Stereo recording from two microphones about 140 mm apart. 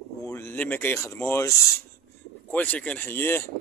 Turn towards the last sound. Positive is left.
turn(degrees=15)  # may be behind; listen again after turning